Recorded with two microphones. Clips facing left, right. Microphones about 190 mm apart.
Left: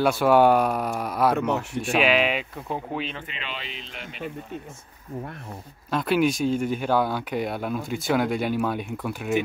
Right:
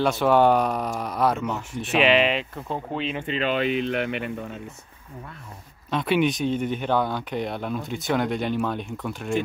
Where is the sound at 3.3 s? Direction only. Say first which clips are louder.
Right 14 dB; 45° right (ahead or behind); by 4.3 s 65° right (ahead or behind).